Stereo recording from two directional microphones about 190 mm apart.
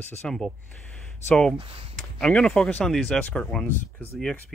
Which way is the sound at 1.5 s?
30° right (ahead or behind).